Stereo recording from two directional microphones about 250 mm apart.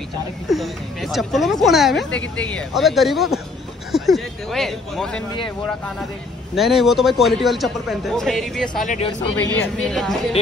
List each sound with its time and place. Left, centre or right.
0.5 s speech: centre
6.5 s speech: centre
8.8 s speech: left
9.6 s speech: centre